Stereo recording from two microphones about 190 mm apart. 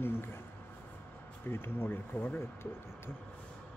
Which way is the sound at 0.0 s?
10° left (ahead or behind).